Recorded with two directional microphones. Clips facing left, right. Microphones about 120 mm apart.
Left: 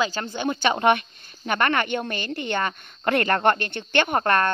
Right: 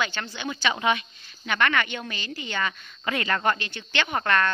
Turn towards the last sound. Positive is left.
turn(degrees=45)  # may be behind; listen again after turning